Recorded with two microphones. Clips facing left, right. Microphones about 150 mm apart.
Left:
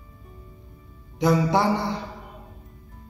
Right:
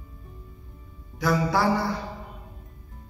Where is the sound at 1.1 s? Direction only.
20° left (ahead or behind).